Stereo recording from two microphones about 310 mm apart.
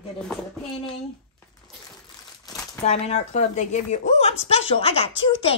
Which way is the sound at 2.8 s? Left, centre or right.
Left.